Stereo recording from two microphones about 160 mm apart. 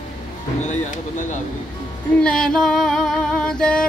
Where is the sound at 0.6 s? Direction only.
45° left (ahead or behind).